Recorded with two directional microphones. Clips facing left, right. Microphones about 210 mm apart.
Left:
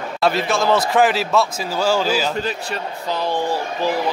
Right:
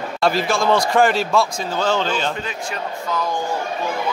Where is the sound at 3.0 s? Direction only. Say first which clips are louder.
Left 3 dB; 30° left (ahead or behind).